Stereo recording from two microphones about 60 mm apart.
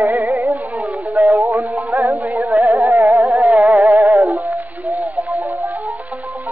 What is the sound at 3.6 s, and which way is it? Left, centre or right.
Music, right.